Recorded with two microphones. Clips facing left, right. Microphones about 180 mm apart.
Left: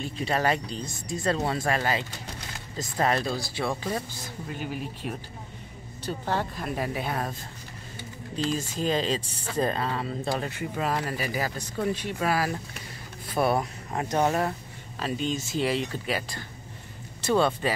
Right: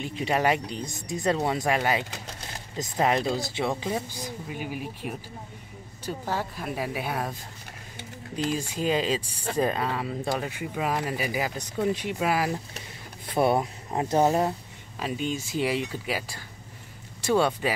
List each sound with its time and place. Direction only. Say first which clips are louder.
0.0 s speech: right 1 dB; 15° right (ahead or behind)
8.5 s speech: right 1 dB; 10° right (ahead or behind)